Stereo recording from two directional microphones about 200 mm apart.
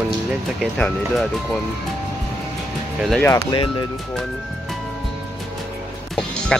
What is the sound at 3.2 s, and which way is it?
Speech, 15° left (ahead or behind).